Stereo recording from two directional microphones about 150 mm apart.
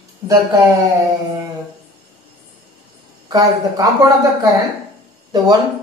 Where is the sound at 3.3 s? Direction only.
25° right (ahead or behind).